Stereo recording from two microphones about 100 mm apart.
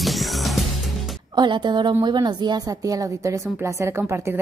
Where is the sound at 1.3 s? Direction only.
50° right (ahead or behind).